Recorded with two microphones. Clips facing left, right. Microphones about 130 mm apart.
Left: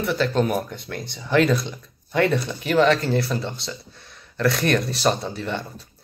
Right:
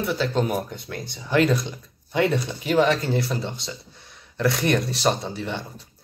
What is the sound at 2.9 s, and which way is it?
A man's voice, 15° right (ahead or behind).